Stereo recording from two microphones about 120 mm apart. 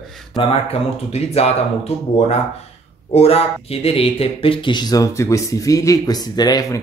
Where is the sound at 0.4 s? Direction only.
55° left (ahead or behind).